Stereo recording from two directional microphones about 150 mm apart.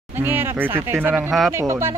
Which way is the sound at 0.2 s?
15° right (ahead or behind).